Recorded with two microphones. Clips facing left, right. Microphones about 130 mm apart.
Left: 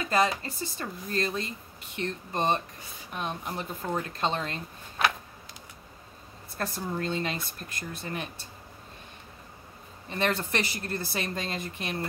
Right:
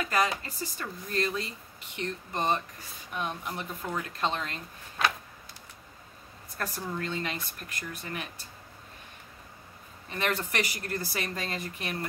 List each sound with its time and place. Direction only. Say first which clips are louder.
0.0 s speech: left 2 dB; 30° left (ahead or behind)
6.6 s speech: left 2 dB; 30° left (ahead or behind)
10.0 s speech: left 2 dB; 30° left (ahead or behind)